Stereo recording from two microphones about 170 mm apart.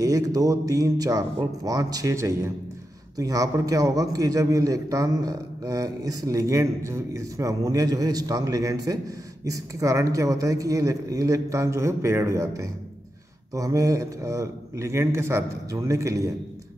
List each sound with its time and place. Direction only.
0.0 s a man's voice: 20° right (ahead or behind)